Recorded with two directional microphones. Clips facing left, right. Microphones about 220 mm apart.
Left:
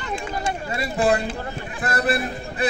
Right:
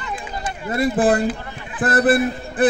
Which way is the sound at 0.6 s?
50° right (ahead or behind).